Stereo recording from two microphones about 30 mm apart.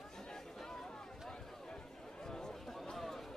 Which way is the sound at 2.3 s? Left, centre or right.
Centre.